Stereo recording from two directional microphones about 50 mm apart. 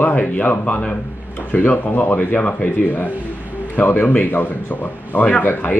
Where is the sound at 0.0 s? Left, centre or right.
Left.